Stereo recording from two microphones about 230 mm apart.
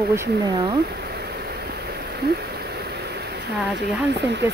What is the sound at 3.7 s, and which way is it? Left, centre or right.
Speech, right.